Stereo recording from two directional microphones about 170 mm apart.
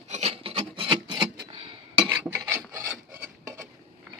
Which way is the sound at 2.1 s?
15° right (ahead or behind).